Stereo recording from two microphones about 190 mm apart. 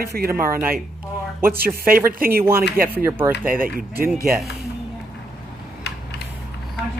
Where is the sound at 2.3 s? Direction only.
15° right (ahead or behind).